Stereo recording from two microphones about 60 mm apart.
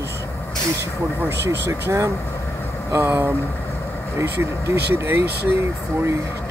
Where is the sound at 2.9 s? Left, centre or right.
Right.